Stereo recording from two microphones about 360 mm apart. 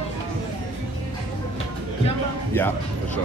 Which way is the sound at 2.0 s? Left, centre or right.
Centre.